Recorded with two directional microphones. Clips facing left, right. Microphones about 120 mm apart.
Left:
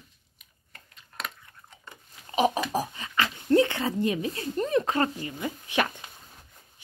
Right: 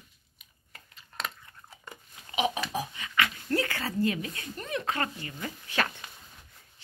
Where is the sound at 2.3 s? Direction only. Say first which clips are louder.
Left 5 dB; 40° left (ahead or behind).